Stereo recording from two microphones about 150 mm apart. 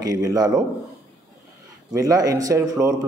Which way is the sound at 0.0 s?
25° right (ahead or behind).